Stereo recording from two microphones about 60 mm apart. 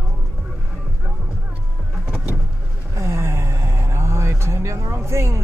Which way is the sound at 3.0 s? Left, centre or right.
Right.